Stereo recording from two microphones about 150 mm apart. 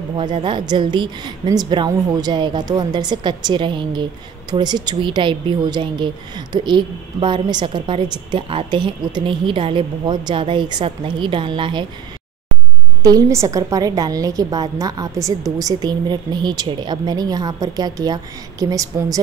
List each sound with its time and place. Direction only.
0.2 s a woman's voice: 30° right (ahead or behind)
13.0 s a woman's voice: 20° right (ahead or behind)